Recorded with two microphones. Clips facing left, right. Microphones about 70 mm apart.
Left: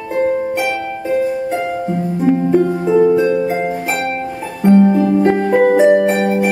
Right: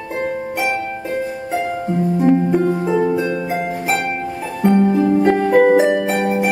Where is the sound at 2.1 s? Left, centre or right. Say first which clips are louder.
Left 2 dB; centre.